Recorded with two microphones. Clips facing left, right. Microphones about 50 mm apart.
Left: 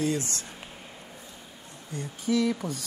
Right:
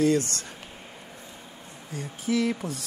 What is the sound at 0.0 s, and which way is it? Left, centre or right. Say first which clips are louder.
Speech: right 6 dB; right.